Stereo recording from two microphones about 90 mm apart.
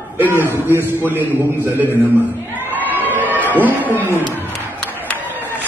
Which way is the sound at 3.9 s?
25° right (ahead or behind).